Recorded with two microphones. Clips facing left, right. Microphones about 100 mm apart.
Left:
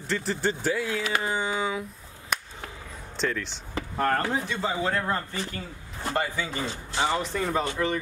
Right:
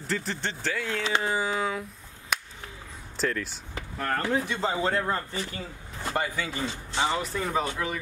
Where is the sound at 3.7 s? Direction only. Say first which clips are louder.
Left 5 dB; 45° left (ahead or behind).